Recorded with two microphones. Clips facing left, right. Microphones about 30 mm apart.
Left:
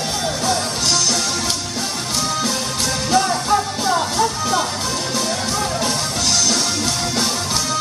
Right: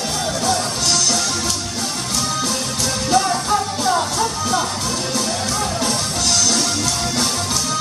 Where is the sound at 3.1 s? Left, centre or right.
Centre.